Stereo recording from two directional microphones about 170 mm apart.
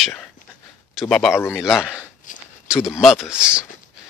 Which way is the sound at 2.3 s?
50° left (ahead or behind).